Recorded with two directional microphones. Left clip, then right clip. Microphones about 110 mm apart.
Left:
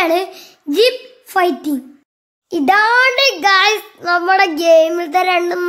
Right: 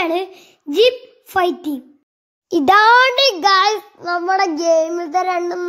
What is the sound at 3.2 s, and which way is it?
Speech, 35° right (ahead or behind).